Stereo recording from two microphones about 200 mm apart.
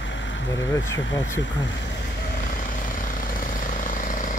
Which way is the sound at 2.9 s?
45° left (ahead or behind).